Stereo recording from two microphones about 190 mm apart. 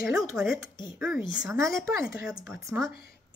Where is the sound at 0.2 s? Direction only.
Centre (ahead or behind).